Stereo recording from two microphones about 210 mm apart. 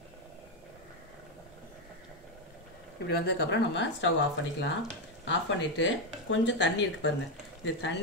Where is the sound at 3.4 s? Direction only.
60° left (ahead or behind).